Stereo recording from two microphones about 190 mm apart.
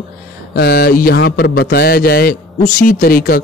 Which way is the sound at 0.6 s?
55° left (ahead or behind).